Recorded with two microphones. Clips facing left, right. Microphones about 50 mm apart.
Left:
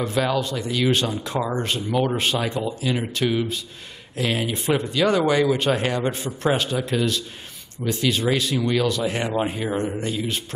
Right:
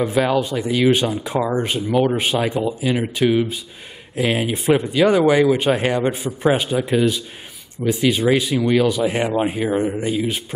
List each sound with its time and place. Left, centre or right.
0.0 s speech: centre